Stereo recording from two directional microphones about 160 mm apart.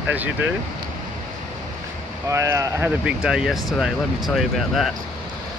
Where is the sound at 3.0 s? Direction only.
5° right (ahead or behind).